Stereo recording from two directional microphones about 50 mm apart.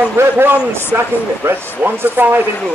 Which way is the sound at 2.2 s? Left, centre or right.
Right.